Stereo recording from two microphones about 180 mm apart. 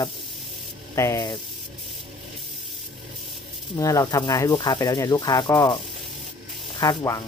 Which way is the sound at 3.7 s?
20° left (ahead or behind).